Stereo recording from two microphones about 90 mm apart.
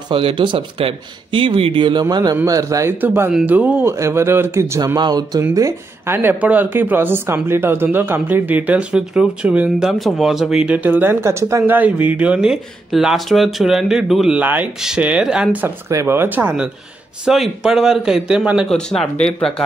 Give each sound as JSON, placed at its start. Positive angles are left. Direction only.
{"t": 0.1, "sound": "speech", "side_deg": -80}
{"t": 2.4, "sound": "speech", "side_deg": -40}
{"t": 2.9, "sound": "speech", "side_deg": -25}
{"t": 3.8, "sound": "speech", "side_deg": -30}
{"t": 6.1, "sound": "speech", "side_deg": -20}
{"t": 11.7, "sound": "speech", "side_deg": -15}
{"t": 14.4, "sound": "speech", "side_deg": -20}
{"t": 15.9, "sound": "speech", "side_deg": -30}
{"t": 17.2, "sound": "speech", "side_deg": -5}
{"t": 18.7, "sound": "speech", "side_deg": 10}